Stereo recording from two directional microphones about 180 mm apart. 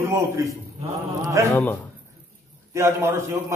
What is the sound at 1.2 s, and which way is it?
Speech, 15° right (ahead or behind).